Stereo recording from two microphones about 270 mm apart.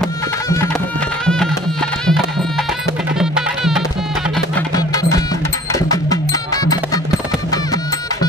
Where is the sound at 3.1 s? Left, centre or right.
Centre.